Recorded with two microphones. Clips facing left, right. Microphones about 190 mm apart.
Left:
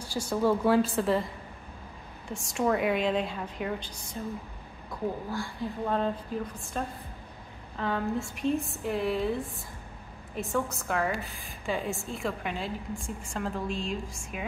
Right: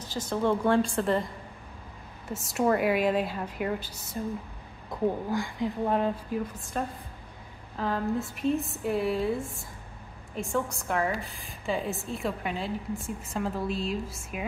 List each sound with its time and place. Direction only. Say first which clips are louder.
0.0 s a woman's voice: left 1 dB; 10° left (ahead or behind)
2.2 s a woman's voice: right 2 dB; 5° right (ahead or behind)
5.3 s speech: right 4 dB; 15° right (ahead or behind)
6.7 s a woman's voice: right 2 dB; 5° right (ahead or behind)